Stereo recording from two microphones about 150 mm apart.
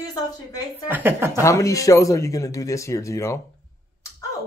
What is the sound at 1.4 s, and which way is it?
Speech, 20° left (ahead or behind).